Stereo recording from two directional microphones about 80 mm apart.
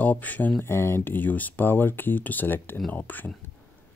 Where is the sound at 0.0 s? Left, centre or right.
Centre.